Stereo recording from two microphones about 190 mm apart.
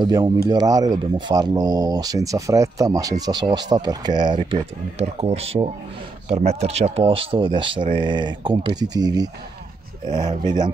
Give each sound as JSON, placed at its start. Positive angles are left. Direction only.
{"t": 0.0, "sound": "speech", "side_deg": -20}